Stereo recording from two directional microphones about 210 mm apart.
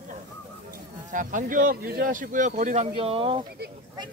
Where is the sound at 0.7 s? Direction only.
40° right (ahead or behind).